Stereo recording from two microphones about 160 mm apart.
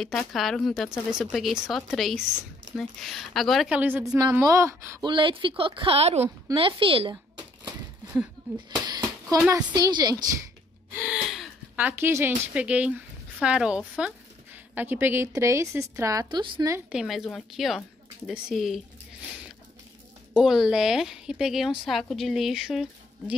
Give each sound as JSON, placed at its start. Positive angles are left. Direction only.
{"t": 0.0, "sound": "a woman's voice", "side_deg": 0}
{"t": 5.0, "sound": "a woman's voice", "side_deg": -30}
{"t": 8.6, "sound": "a sound", "side_deg": -25}
{"t": 9.7, "sound": "speech", "side_deg": -25}
{"t": 11.0, "sound": "speech", "side_deg": -5}
{"t": 16.9, "sound": "a woman's voice", "side_deg": 0}
{"t": 20.3, "sound": "a woman's voice", "side_deg": 0}